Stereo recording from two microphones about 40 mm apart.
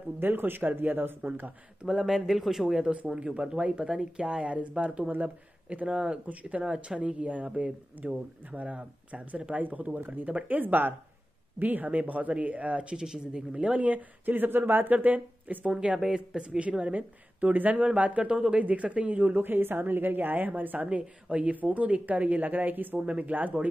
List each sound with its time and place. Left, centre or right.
0.2 s a woman's voice: right
1.9 s speech: centre
3.1 s speech: right
5.9 s speech: right
7.0 s speech: right
12.9 s speech: centre
13.7 s speech: right
14.3 s speech: right
19.3 s a woman's voice: right
20.8 s speech: right
22.9 s speech: right